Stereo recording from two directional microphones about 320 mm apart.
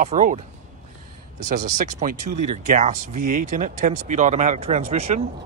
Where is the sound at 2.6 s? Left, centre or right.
Right.